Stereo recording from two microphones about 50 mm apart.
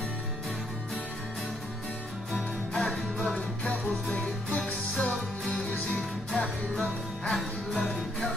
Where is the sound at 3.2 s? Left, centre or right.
Centre.